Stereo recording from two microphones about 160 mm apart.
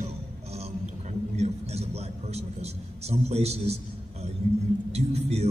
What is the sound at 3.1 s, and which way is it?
Speech, 40° right (ahead or behind).